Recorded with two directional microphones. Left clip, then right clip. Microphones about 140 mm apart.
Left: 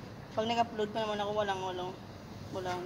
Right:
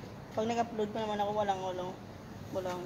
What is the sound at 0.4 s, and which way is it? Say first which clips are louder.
Speech: left 1 dB; 20° right (ahead or behind).